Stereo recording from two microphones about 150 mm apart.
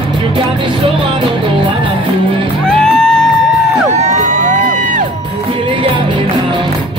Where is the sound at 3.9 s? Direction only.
50° right (ahead or behind).